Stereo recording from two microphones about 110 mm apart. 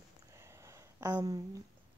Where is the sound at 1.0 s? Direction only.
40° right (ahead or behind).